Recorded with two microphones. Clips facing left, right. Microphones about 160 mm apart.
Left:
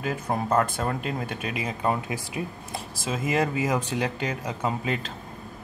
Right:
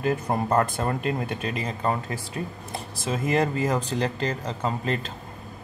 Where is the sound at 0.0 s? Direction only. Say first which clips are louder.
Right 3 dB; centre (ahead or behind).